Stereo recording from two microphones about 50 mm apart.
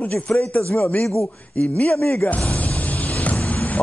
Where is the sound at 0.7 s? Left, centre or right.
Left.